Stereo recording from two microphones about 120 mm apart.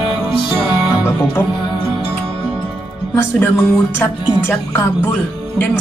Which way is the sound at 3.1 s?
20° left (ahead or behind).